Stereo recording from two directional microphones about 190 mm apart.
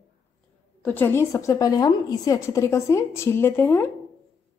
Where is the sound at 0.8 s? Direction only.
10° left (ahead or behind).